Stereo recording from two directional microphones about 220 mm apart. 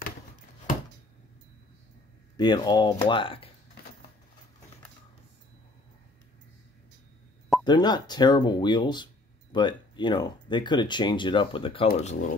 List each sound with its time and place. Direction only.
2.3 s speech: 20° left (ahead or behind)
7.6 s speech: 20° left (ahead or behind)